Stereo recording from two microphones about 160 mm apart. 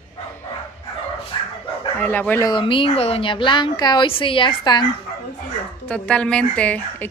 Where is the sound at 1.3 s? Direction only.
30° left (ahead or behind).